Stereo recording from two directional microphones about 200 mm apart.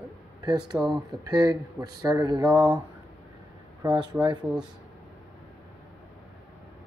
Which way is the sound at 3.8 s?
20° right (ahead or behind).